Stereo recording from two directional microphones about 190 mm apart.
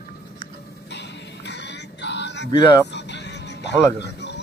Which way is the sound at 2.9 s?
65° left (ahead or behind).